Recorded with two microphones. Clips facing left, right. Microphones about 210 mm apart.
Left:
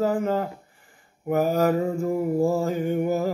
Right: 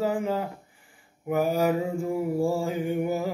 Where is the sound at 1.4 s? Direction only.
10° right (ahead or behind).